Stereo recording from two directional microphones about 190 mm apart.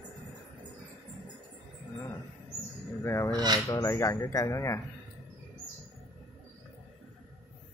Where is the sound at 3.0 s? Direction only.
15° left (ahead or behind).